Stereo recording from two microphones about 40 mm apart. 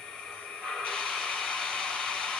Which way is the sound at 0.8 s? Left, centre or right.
Left.